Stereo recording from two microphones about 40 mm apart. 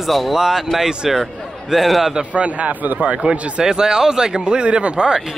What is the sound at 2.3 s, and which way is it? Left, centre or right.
Speech, right.